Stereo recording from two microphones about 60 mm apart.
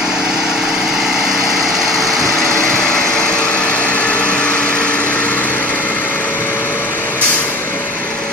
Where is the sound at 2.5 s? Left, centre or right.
Centre; by 7.2 s left.